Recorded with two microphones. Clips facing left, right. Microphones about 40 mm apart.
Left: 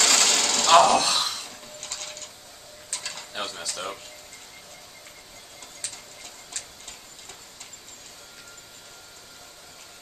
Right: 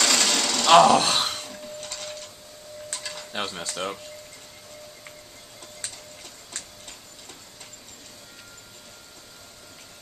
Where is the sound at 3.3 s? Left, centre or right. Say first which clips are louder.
Right 3 dB; right.